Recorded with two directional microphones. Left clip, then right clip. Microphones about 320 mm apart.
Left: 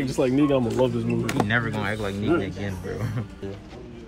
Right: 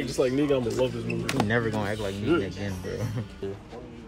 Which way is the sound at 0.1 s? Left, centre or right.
Centre.